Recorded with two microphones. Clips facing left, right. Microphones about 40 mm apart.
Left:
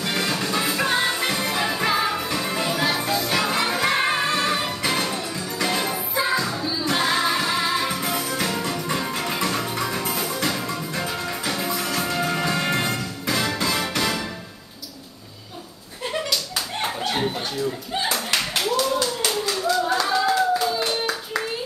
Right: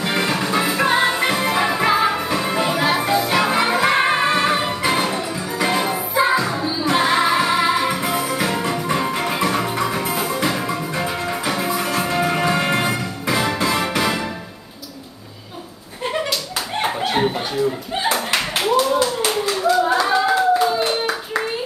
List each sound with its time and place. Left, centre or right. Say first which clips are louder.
0.0 s music: right 4 dB; centre
16.1 s slap: right 3 dB; right
18.0 s clapping: right 5 dB; right